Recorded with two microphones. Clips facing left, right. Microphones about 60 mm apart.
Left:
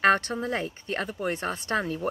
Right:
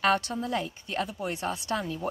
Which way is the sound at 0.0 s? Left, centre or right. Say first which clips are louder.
Left 3 dB; left.